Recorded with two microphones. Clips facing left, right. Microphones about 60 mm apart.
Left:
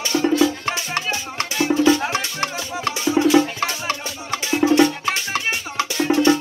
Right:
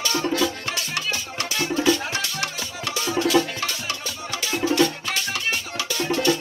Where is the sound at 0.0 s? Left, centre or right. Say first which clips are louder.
Left 5 dB; left.